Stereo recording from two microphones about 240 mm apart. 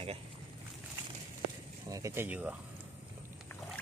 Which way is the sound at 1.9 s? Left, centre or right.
Centre.